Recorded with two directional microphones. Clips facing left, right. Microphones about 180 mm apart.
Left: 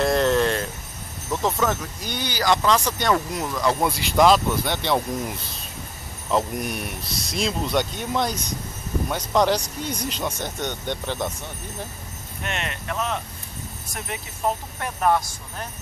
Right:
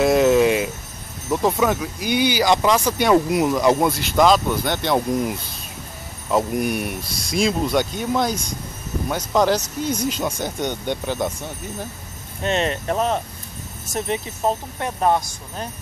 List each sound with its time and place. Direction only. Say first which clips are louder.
0.0 s jingle bell: right 5 dB; 5° right (ahead or behind)
1.3 s speech: right 4 dB; 10° right (ahead or behind)
3.9 s speech: right 1 dB; centre (ahead or behind)
6.3 s speech: right 4 dB; 5° right (ahead or behind)
12.4 s speech: right 9 dB; 35° right (ahead or behind)
13.9 s speech: right 10 dB; 25° right (ahead or behind)